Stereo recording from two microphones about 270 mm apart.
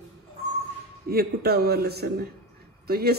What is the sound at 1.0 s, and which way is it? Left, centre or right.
A woman's voice, right.